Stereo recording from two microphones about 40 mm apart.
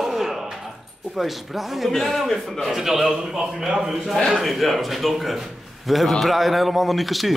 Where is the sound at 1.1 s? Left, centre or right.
Centre.